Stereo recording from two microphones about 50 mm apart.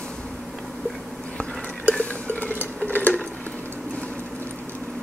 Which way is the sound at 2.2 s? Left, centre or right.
Left.